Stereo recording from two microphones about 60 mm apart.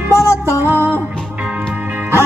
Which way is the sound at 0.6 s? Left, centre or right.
Right.